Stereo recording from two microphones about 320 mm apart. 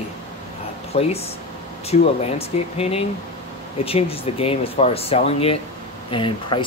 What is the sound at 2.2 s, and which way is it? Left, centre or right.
Speech, centre.